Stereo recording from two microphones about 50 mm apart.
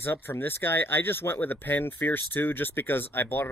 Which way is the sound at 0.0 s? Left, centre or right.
Left.